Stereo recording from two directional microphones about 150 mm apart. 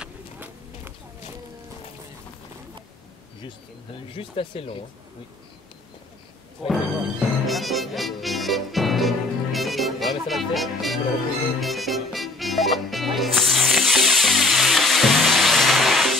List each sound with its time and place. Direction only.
0.0 s a sound: 10° right (ahead or behind)
4.1 s speech: 40° left (ahead or behind)
6.7 s music: centre (ahead or behind)